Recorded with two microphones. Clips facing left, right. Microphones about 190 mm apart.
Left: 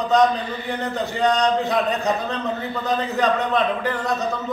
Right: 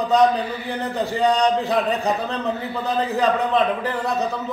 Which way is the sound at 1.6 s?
30° right (ahead or behind).